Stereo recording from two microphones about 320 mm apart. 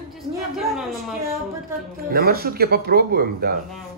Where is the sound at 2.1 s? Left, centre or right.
Right.